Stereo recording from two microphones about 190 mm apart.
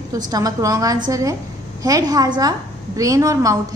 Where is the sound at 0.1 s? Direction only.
20° right (ahead or behind).